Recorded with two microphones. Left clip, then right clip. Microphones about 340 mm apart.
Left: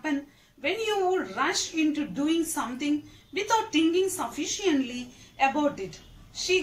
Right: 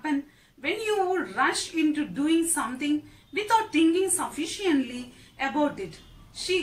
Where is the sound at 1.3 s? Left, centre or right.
Centre.